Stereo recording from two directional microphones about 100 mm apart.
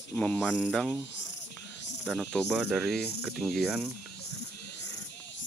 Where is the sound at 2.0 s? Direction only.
Centre (ahead or behind).